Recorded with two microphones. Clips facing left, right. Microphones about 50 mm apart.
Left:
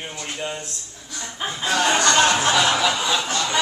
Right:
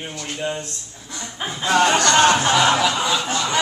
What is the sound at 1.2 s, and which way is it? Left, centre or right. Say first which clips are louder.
Speech: right 1 dB; centre.